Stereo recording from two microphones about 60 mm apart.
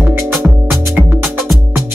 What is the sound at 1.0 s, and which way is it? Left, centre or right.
Music, centre.